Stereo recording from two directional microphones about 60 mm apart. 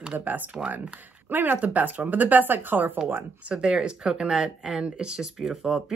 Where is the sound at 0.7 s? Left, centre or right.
Right.